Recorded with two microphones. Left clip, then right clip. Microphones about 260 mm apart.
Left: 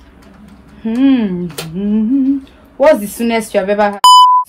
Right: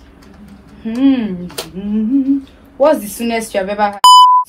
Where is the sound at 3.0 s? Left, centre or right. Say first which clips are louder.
Left 3 dB; left.